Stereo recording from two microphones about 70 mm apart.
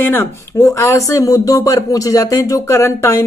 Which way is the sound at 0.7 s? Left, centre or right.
Left.